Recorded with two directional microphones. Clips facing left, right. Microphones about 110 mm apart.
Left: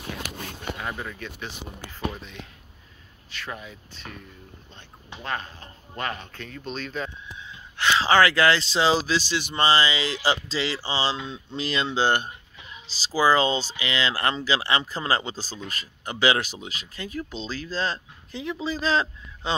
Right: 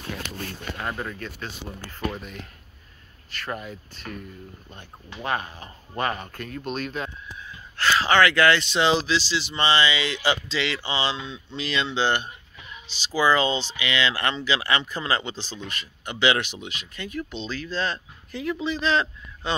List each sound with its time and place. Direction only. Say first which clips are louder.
0.7 s speech: right 2 dB; centre (ahead or behind)
3.3 s speech: right 4 dB; centre (ahead or behind)
5.2 s speech: right 4 dB; 65° right (ahead or behind)
6.3 s speech: right 4 dB; 5° right (ahead or behind)
7.3 s gasp: right 1 dB; 20° left (ahead or behind)
8.0 s speech: even; 30° left (ahead or behind); by 9.7 s 50° left (ahead or behind)
9.7 s speech: even; 35° left (ahead or behind)
18.7 s speech: even; 35° left (ahead or behind)